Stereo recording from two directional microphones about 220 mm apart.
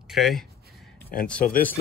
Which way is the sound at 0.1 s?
Centre (ahead or behind).